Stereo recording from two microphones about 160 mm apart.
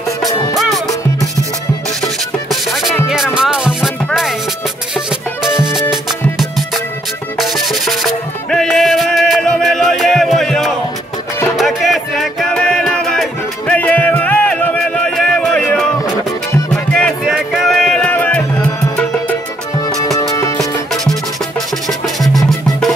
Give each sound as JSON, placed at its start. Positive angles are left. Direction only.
{"t": 0.3, "sound": "music", "side_deg": 25}
{"t": 0.6, "sound": "music", "side_deg": 0}
{"t": 2.5, "sound": "music", "side_deg": 0}
{"t": 7.3, "sound": "music", "side_deg": 0}
{"t": 16.9, "sound": "music", "side_deg": 0}
{"t": 20.2, "sound": "music", "side_deg": 20}
{"t": 20.9, "sound": "music", "side_deg": 0}